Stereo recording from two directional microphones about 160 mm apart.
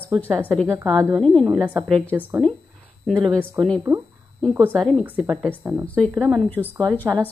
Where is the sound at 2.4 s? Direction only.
5° left (ahead or behind).